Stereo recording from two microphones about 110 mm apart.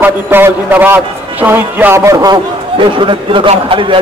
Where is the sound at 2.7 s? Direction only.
50° right (ahead or behind).